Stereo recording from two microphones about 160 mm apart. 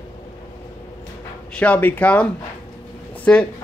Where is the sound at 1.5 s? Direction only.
10° left (ahead or behind).